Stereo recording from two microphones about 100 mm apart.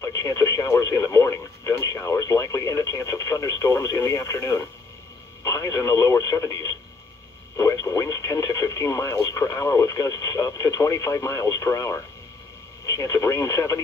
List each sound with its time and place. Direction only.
0.0 s speech: 35° left (ahead or behind)